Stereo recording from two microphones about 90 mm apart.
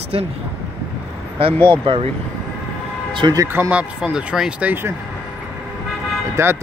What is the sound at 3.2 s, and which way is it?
Speech, 55° right (ahead or behind).